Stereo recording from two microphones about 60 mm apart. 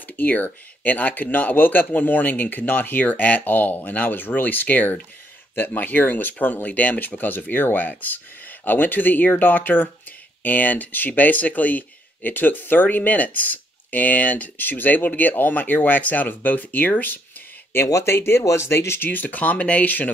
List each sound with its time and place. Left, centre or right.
0.0 s speech: left
17.8 s speech: left
19.0 s speech: left